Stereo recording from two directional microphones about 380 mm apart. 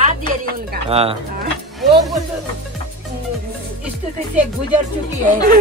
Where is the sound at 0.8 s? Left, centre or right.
Centre.